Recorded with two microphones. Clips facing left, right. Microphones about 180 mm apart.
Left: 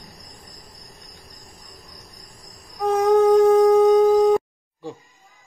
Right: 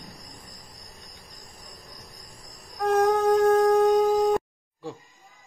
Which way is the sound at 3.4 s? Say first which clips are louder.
Left 5 dB; 10° left (ahead or behind).